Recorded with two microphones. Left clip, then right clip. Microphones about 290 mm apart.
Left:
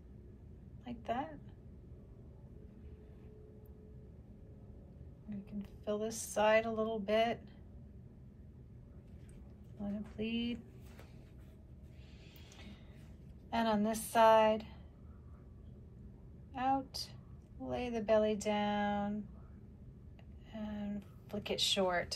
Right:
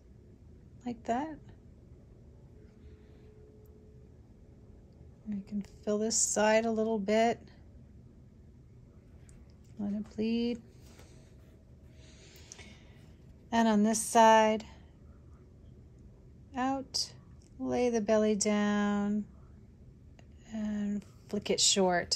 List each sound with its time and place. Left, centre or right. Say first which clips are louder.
0.8 s speech: right 6 dB; right
5.3 s speech: right 7 dB; right
10.1 s speech: right 7 dB; centre
13.5 s speech: right 6 dB; right
16.5 s a woman's voice: right 2 dB; right
20.4 s speech: right 7 dB; right